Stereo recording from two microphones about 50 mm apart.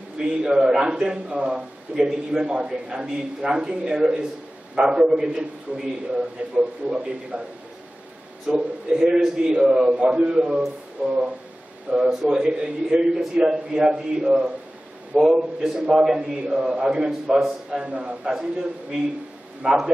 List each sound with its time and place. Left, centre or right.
0.2 s a man's voice: centre
5.7 s a man's voice: right
8.5 s a man's voice: right
8.9 s a man's voice: centre